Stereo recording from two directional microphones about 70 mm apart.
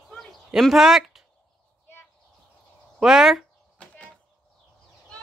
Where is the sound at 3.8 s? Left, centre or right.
Centre.